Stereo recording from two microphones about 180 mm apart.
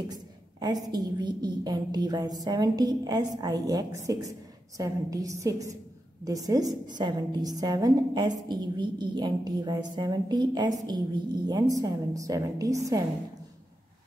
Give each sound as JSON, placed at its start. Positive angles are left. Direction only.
{"t": 0.0, "sound": "a woman's voice", "side_deg": -20}